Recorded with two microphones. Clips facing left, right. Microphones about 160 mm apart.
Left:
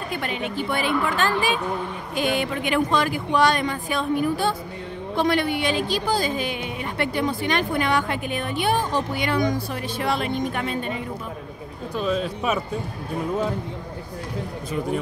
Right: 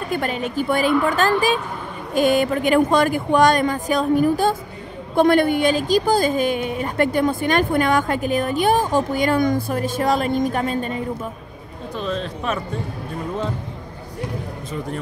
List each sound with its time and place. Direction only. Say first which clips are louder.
0.1 s a woman's voice: right 5 dB; 45° right (ahead or behind)
12.0 s speech: left 2 dB; 5° left (ahead or behind)